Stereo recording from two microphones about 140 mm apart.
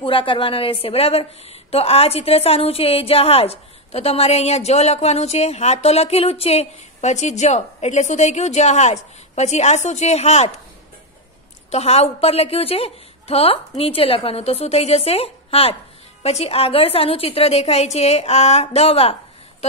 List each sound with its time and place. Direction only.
0.0 s a woman's voice: 35° left (ahead or behind)
11.7 s a woman's voice: 50° left (ahead or behind)